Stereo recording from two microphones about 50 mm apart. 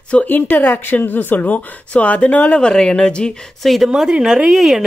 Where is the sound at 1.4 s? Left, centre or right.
Left.